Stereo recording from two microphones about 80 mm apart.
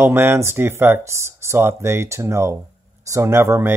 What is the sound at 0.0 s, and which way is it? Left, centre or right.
Speech, right.